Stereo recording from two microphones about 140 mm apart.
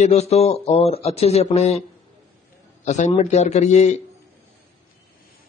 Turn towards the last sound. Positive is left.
turn(degrees=55)  # may be behind; listen again after turning